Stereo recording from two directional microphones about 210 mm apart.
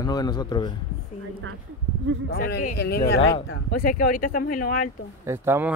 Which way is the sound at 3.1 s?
25° left (ahead or behind).